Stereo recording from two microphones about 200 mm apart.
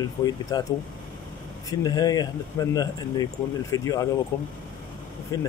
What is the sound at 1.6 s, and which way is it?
Speech, 20° left (ahead or behind).